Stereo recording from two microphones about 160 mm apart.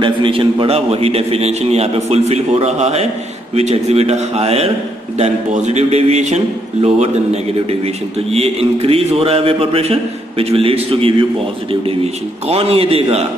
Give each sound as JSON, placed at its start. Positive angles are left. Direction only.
{"t": 0.0, "sound": "a man's voice", "side_deg": -30}